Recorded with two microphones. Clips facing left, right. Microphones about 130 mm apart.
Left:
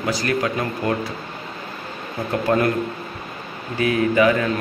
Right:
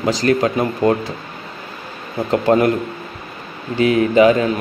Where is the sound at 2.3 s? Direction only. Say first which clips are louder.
Right 5 dB; 20° right (ahead or behind).